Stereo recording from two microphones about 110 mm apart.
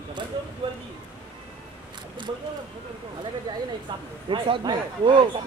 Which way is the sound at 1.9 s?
45° right (ahead or behind).